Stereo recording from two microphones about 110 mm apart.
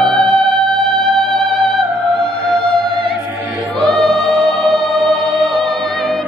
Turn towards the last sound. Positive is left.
turn(degrees=0)  # may be behind; listen again after turning